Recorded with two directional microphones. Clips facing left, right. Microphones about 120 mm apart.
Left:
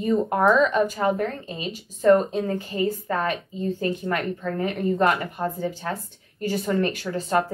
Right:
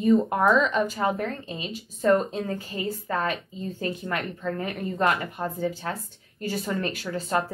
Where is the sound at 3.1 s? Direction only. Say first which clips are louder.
Left 2 dB; 30° left (ahead or behind).